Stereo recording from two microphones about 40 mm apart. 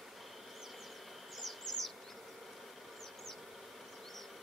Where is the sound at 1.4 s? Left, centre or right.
Centre.